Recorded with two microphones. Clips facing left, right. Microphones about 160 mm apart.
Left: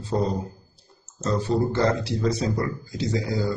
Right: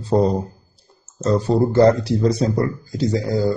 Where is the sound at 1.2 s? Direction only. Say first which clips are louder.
Right 6 dB; 40° right (ahead or behind).